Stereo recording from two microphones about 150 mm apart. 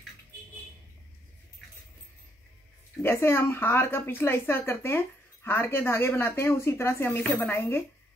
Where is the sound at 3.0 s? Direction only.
15° left (ahead or behind).